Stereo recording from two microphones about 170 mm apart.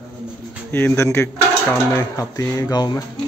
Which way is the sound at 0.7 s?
15° left (ahead or behind).